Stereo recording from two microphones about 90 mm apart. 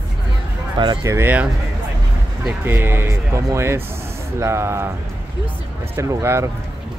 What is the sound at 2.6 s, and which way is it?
Speech, 25° right (ahead or behind).